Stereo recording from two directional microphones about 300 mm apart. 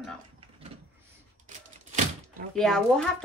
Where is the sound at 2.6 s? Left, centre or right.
Centre.